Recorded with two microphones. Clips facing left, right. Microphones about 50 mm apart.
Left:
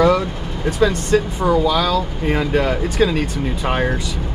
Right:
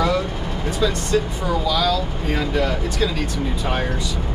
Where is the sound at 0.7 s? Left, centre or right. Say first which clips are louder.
Left 5 dB; left.